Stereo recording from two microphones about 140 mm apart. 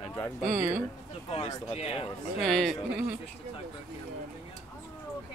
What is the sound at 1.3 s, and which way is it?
Speech, 45° left (ahead or behind).